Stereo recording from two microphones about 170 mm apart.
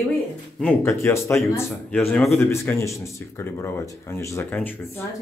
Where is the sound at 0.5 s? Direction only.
10° left (ahead or behind).